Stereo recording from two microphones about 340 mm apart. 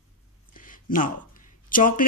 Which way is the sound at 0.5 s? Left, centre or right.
Left.